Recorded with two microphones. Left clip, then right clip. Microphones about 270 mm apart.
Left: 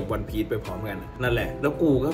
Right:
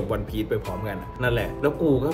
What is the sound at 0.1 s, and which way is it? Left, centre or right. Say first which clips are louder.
Speech: left 1 dB; centre.